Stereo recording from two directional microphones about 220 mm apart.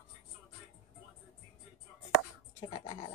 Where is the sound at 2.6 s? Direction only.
20° left (ahead or behind).